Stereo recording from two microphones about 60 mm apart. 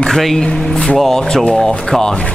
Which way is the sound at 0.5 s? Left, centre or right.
Centre.